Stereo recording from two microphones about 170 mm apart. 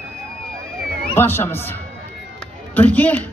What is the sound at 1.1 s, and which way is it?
Speech, 15° left (ahead or behind).